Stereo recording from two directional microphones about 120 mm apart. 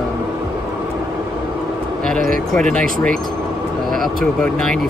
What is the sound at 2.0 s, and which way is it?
Speech, 5° left (ahead or behind).